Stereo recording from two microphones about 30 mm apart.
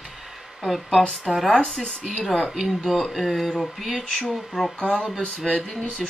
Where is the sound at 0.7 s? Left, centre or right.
Centre.